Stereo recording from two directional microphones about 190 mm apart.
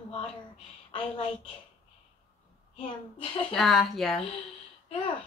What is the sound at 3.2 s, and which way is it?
Speech, 30° left (ahead or behind).